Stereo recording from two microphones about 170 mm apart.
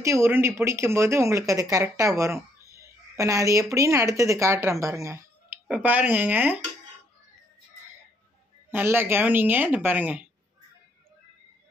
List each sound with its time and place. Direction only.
0.0 s a woman's voice: 15° right (ahead or behind)
8.6 s speech: 10° right (ahead or behind)